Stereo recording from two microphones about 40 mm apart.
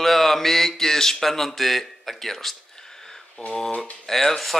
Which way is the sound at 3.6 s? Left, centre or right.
Left.